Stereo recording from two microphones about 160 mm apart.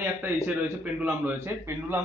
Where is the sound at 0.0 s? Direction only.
10° right (ahead or behind).